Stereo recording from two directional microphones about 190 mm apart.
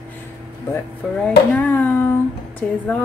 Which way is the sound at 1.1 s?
5° left (ahead or behind).